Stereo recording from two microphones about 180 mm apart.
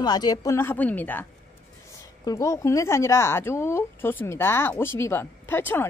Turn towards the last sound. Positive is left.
turn(degrees=10)  # may be behind; listen again after turning